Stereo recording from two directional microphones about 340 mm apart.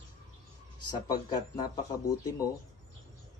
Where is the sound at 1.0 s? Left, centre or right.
Centre.